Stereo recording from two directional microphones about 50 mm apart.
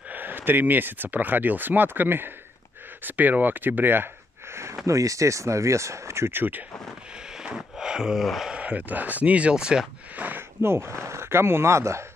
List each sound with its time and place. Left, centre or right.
0.1 s speech: right
4.8 s speech: right
6.3 s speech: right
7.4 s a sound: centre
8.5 s speech: right
10.1 s speech: right
10.6 s speech: right